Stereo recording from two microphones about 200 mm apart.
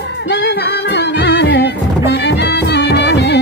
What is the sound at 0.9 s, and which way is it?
Music, 55° left (ahead or behind).